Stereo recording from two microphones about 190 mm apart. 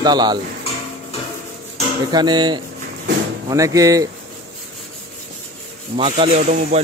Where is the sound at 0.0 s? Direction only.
20° right (ahead or behind).